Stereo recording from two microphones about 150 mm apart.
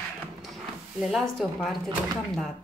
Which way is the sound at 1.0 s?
Centre (ahead or behind).